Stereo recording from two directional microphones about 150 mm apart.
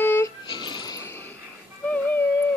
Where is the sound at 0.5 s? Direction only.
30° left (ahead or behind).